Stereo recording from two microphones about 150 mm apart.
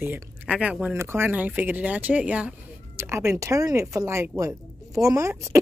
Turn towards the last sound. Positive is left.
turn(degrees=-20)  # may be behind; listen again after turning